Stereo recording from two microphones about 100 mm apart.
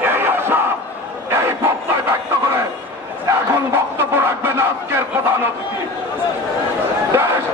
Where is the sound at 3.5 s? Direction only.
25° right (ahead or behind).